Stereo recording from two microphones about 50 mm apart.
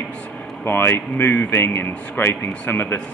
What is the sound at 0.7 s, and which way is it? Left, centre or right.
Speech, left.